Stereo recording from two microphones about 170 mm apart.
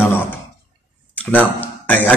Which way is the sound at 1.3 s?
10° left (ahead or behind).